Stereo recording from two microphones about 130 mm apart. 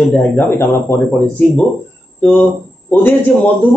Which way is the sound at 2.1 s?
10° left (ahead or behind).